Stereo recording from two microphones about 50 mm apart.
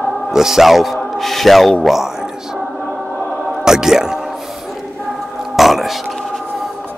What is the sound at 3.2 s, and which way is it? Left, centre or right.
Music, left.